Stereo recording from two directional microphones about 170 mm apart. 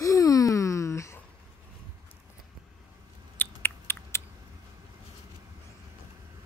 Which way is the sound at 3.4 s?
15° left (ahead or behind).